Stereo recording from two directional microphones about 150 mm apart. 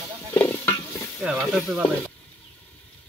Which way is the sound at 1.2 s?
Centre (ahead or behind).